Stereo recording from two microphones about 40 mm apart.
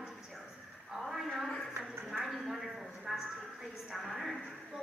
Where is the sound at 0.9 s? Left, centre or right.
Centre.